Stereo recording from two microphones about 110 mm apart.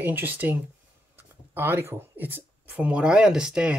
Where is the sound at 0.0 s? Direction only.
15° right (ahead or behind).